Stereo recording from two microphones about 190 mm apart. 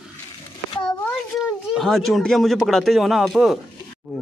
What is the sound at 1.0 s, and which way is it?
Speech, centre (ahead or behind).